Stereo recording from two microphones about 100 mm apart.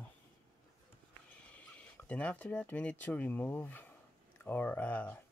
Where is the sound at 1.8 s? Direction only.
15° left (ahead or behind).